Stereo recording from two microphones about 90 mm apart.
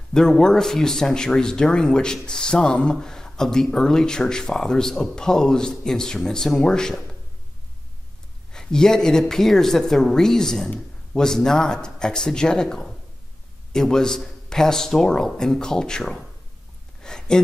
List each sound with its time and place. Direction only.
0.1 s a man's voice: 5° left (ahead or behind)
8.5 s a man's voice: 5° left (ahead or behind)
17.0 s a sound: 5° left (ahead or behind)